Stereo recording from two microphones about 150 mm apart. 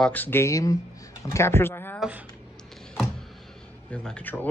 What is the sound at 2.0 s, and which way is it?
Speech, 10° right (ahead or behind).